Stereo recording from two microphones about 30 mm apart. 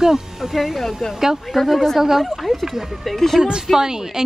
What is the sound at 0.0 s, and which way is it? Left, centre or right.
Speech, centre.